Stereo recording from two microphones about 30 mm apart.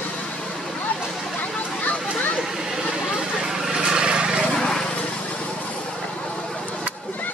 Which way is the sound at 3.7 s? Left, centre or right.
Right.